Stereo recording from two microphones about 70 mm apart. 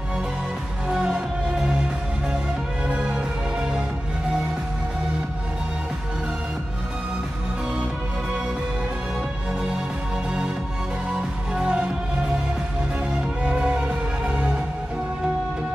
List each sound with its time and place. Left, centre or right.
0.8 s music: centre
2.9 s music: centre
11.1 s music: centre
13.4 s music: centre